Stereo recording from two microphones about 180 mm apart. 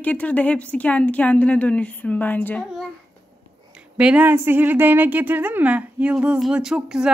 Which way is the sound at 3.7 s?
5° right (ahead or behind).